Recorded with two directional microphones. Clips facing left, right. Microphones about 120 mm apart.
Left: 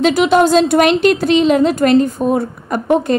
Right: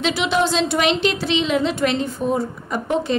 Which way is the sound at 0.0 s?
45° left (ahead or behind).